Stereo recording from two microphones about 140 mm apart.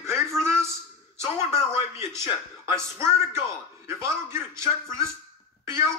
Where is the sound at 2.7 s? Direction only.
20° right (ahead or behind).